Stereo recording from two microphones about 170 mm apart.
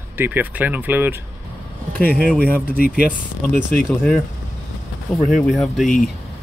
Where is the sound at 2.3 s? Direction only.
10° left (ahead or behind).